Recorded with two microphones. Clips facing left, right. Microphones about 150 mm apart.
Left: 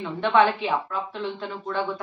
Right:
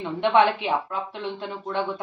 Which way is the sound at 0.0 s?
15° right (ahead or behind).